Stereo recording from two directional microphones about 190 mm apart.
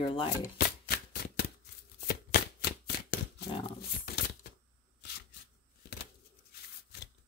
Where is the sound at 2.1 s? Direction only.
55° left (ahead or behind).